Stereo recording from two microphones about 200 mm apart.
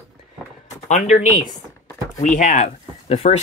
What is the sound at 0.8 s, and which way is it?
Speech, 40° left (ahead or behind).